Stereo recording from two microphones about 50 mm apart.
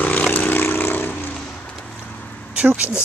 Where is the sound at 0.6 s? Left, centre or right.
Left.